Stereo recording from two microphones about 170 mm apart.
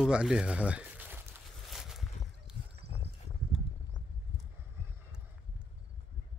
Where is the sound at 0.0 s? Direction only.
5° right (ahead or behind).